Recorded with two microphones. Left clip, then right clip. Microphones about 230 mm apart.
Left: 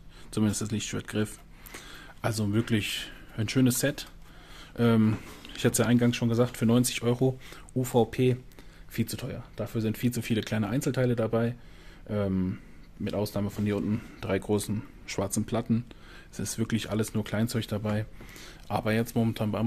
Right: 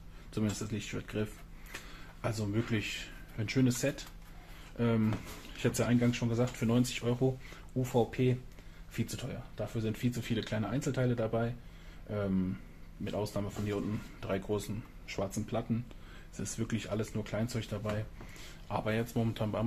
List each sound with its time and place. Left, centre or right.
0.3 s speech: left